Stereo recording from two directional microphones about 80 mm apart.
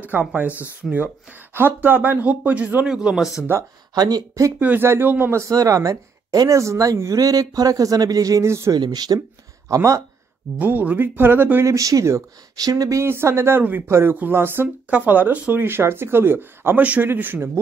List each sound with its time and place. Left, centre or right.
0.0 s speech: centre
3.9 s speech: right
4.6 s speech: right
8.7 s speech: right
9.7 s speech: right
10.6 s speech: right
11.6 s speech: right
13.0 s speech: right